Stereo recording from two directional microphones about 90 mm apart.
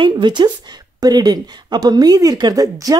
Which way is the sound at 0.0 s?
55° right (ahead or behind).